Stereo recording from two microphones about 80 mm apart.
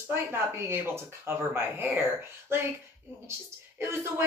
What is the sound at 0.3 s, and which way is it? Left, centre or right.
Speech, right.